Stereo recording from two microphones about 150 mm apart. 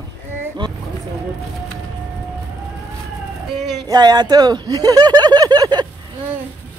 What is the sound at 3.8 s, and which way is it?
Speech, 25° right (ahead or behind).